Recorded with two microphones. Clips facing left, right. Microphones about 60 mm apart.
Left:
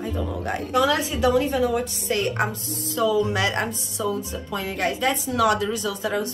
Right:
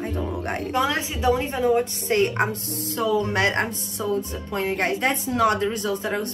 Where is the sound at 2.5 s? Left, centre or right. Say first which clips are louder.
Right 2 dB; right.